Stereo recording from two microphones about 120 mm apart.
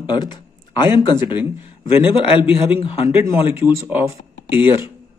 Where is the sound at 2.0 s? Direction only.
45° left (ahead or behind).